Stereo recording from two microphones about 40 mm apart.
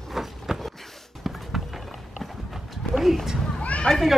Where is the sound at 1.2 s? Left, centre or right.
Centre.